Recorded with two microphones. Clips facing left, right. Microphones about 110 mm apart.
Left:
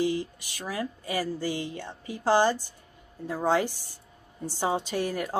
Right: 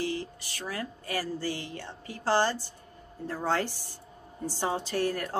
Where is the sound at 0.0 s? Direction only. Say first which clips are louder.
Left 5 dB; 15° left (ahead or behind).